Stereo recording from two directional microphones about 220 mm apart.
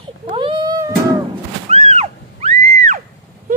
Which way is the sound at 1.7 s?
30° right (ahead or behind).